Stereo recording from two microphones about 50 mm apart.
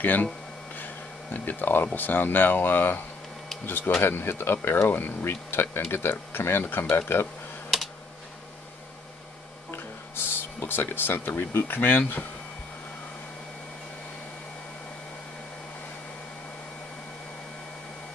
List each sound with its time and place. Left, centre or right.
0.0 s speech: left
0.7 s a sound: left
2.0 s speech: left
7.7 s computer keyboard: centre
9.7 s music: left